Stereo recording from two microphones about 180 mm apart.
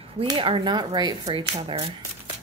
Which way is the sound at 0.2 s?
30° right (ahead or behind).